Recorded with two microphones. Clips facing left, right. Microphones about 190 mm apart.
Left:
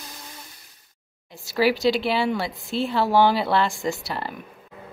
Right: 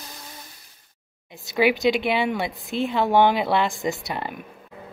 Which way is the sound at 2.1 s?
20° right (ahead or behind).